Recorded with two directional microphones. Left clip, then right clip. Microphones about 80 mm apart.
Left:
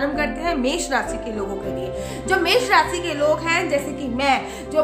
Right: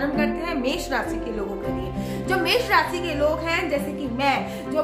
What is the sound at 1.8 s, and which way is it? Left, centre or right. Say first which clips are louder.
Speech: left 3 dB; left.